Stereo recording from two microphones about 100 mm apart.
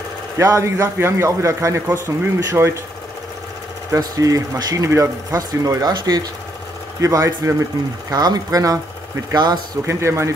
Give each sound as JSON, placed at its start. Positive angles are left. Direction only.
{"t": 0.4, "sound": "a man's voice", "side_deg": -30}
{"t": 3.9, "sound": "speech", "side_deg": -35}
{"t": 9.8, "sound": "a man's voice", "side_deg": -30}